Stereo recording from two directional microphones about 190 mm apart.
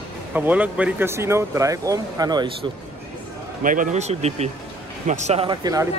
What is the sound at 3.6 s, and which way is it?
Speech, 45° right (ahead or behind).